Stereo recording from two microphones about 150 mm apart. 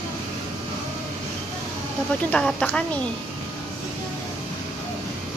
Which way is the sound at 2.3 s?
10° left (ahead or behind).